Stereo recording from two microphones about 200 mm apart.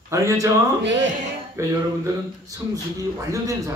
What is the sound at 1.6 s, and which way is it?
A man's voice, 15° right (ahead or behind).